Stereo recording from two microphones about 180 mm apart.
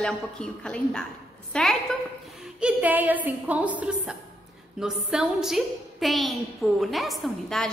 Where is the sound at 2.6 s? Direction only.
10° right (ahead or behind).